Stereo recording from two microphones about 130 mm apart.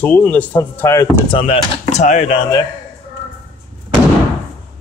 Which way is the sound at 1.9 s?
65° left (ahead or behind).